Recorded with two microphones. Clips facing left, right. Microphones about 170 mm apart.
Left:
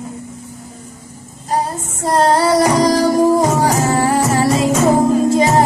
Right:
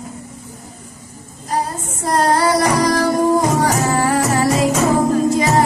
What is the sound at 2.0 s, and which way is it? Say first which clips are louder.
Music: left 2 dB; 25° left (ahead or behind).